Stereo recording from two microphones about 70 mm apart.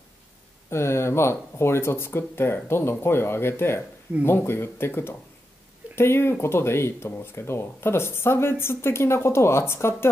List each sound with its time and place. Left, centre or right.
0.7 s speech: left